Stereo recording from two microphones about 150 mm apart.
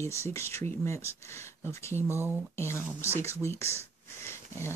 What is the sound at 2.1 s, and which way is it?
Speech, 15° right (ahead or behind).